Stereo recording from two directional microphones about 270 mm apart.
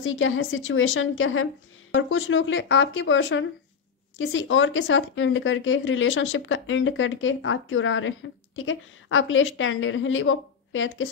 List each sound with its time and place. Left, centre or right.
0.0 s speech: left